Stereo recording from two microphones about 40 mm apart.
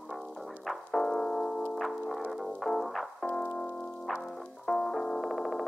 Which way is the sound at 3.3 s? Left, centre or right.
Left.